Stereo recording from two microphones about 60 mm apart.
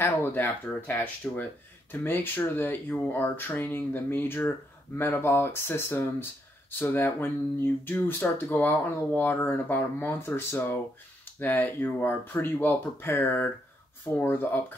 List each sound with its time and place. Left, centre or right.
0.0 s speech: left